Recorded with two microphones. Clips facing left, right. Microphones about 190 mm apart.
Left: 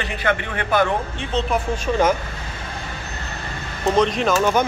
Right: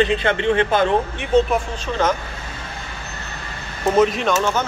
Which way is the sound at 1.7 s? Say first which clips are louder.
Left 5 dB; 10° left (ahead or behind).